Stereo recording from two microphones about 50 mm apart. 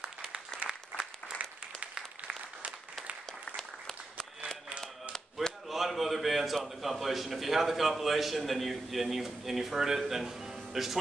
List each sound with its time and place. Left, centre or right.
0.0 s applause: centre
2.0 s applause: right
3.5 s applause: centre
4.6 s a sound: right
5.7 s a man's voice: centre